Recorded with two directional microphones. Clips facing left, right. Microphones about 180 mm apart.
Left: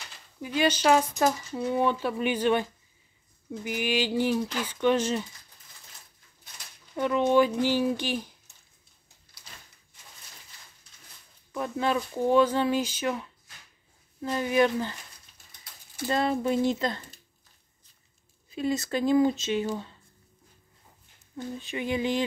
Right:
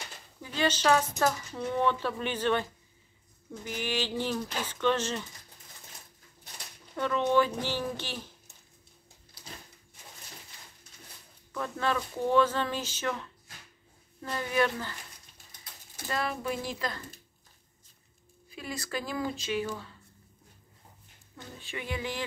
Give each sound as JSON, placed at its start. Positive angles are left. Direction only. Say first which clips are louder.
{"t": 0.4, "sound": "speech", "louder": "left 4 dB", "side_deg": 10}
{"t": 7.0, "sound": "speech", "louder": "left 4 dB", "side_deg": 15}
{"t": 11.5, "sound": "speech", "louder": "left 3 dB", "side_deg": 15}
{"t": 16.1, "sound": "speech", "louder": "left 7 dB", "side_deg": 25}
{"t": 18.5, "sound": "speech", "louder": "left 9 dB", "side_deg": 25}
{"t": 21.4, "sound": "speech", "louder": "left 8 dB", "side_deg": 20}